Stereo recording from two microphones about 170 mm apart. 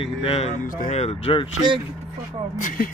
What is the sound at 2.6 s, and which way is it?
Speech, 50° left (ahead or behind).